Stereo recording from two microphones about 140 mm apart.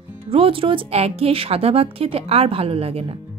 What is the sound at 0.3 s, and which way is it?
A woman's voice, 40° right (ahead or behind).